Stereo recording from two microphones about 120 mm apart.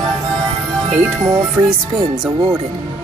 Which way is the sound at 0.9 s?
25° right (ahead or behind).